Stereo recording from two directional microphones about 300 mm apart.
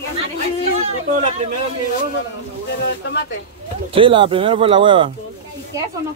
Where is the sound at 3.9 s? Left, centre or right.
Centre.